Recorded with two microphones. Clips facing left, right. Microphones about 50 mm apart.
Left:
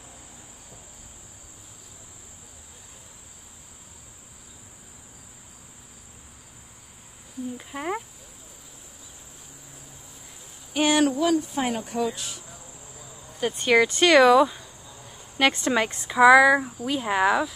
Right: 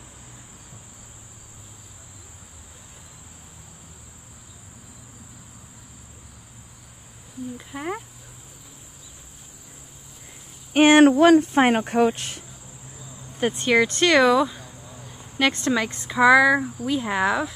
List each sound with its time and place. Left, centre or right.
7.5 s speech: centre
10.7 s speech: right
13.6 s speech: centre
13.8 s speech: centre
14.1 s speech: centre
16.1 s speech: centre